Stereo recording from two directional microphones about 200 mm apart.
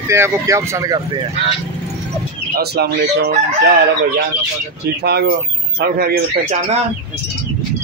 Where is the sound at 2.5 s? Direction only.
50° right (ahead or behind).